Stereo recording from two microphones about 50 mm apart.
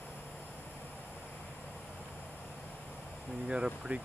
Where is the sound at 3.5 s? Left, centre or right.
Centre.